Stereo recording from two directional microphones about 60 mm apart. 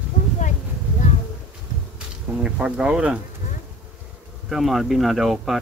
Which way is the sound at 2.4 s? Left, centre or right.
Centre.